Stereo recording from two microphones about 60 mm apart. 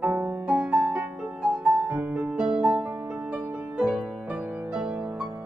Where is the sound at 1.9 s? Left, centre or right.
Right.